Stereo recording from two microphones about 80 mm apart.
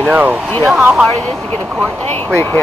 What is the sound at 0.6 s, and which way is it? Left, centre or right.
Speech, centre.